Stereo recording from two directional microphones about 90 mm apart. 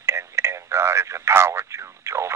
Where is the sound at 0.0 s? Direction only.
30° right (ahead or behind).